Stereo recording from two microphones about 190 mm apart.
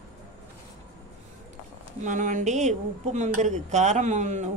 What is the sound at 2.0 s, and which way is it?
Speech, 40° right (ahead or behind).